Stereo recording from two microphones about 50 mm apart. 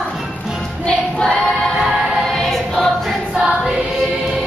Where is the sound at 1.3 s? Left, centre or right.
Centre.